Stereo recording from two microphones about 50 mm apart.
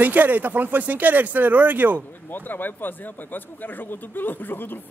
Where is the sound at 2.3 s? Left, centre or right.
Left.